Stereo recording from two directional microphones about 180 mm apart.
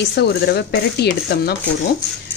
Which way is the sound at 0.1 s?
70° left (ahead or behind).